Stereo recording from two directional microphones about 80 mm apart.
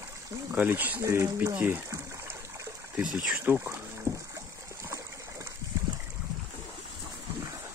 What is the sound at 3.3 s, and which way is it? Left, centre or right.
Speech, right.